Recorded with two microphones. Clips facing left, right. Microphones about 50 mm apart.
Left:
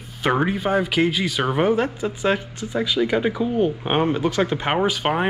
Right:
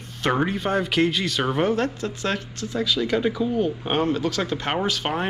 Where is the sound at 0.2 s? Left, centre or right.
Centre.